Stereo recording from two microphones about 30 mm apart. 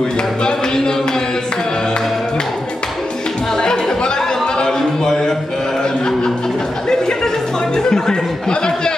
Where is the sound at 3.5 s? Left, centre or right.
Left.